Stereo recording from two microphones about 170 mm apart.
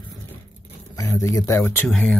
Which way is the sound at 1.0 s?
15° left (ahead or behind).